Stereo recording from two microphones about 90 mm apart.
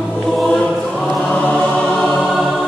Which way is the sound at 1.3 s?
15° left (ahead or behind).